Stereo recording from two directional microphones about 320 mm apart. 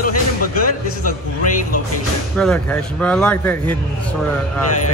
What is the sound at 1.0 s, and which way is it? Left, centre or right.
Speech, left.